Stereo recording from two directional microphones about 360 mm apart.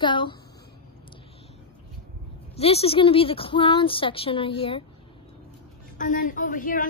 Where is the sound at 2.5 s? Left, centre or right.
Centre.